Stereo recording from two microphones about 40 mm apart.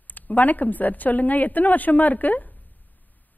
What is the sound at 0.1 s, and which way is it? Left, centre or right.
A man's voice, left.